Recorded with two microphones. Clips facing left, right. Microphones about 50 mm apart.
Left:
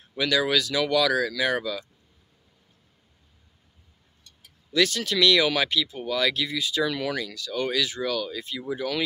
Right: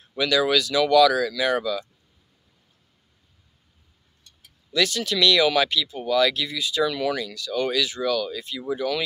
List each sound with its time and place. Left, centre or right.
0.2 s speech: centre
4.7 s speech: left